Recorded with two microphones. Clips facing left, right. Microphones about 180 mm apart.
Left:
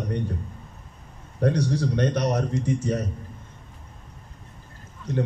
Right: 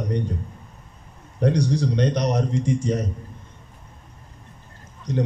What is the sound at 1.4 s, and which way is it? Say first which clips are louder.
A man's voice: right 2 dB; 15° right (ahead or behind).